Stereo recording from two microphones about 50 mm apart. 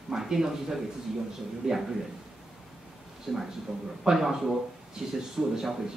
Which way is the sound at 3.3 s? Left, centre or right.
Centre.